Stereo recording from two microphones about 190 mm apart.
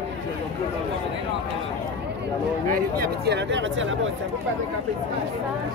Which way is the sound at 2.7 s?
55° right (ahead or behind).